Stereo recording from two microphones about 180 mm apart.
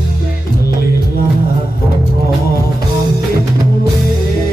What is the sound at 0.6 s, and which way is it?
Music, 60° left (ahead or behind).